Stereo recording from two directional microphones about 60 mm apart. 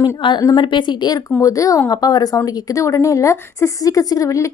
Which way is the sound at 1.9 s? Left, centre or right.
Left.